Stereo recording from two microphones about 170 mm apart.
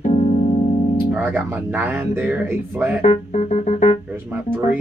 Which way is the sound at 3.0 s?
40° left (ahead or behind).